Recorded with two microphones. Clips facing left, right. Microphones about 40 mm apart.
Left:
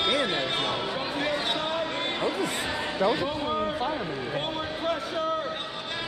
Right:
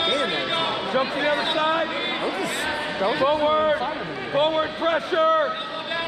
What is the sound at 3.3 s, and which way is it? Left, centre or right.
A man's voice, right.